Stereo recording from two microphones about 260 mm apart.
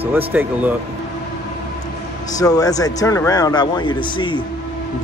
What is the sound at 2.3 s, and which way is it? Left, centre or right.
A man's voice, centre.